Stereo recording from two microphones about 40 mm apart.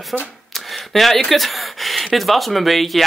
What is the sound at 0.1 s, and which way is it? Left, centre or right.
Speech, centre.